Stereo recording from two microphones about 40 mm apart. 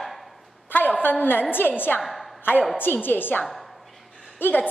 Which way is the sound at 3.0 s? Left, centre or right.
Left.